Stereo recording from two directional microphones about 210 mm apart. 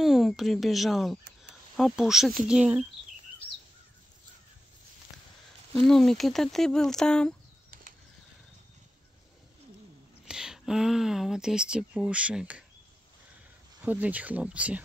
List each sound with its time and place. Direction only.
0.0 s speech: centre (ahead or behind)
5.9 s speech: centre (ahead or behind)
7.7 s a sound: 45° right (ahead or behind)
10.2 s speech: 5° right (ahead or behind)
13.8 s speech: 5° right (ahead or behind)